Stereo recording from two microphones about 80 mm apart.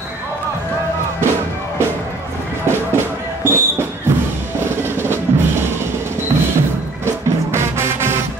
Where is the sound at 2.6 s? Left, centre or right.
Right.